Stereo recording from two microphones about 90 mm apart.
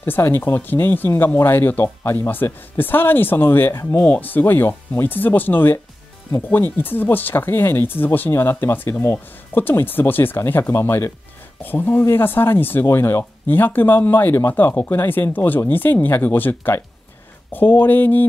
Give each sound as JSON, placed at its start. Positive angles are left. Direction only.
{"t": 0.0, "sound": "speech", "side_deg": 25}